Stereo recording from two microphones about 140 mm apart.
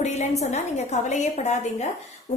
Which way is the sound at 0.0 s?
55° left (ahead or behind).